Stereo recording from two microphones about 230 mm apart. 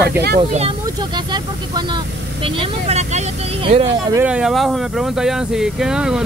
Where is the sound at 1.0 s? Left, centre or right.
Centre.